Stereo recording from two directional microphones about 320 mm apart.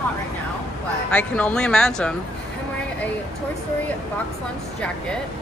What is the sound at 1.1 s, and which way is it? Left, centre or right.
Speech, centre.